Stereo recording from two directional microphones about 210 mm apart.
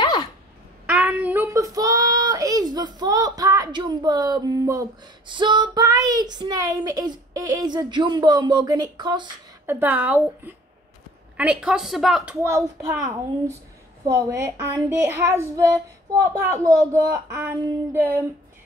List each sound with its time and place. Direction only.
0.0 s a sound: 20° left (ahead or behind)
0.8 s speech: 5° right (ahead or behind)
9.7 s speech: 10° right (ahead or behind)
12.4 s speech: 15° right (ahead or behind)